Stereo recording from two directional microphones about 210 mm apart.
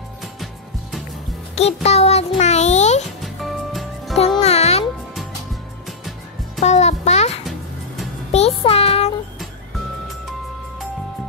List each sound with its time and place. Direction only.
1.5 s a child's voice: 30° left (ahead or behind)
3.2 s music: centre (ahead or behind)
4.4 s music: 30° left (ahead or behind)
6.6 s music: 30° left (ahead or behind)